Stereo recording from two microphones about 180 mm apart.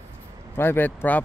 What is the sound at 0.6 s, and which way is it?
Speech, 10° left (ahead or behind).